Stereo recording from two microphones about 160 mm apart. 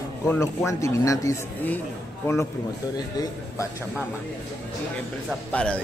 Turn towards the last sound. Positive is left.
turn(degrees=5)  # may be behind; listen again after turning